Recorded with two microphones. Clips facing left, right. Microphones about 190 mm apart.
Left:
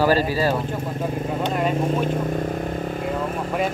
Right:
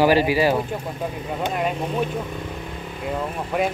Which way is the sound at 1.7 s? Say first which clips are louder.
Left 3 dB; 45° left (ahead or behind).